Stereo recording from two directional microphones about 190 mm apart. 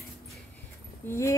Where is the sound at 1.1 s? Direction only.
15° left (ahead or behind).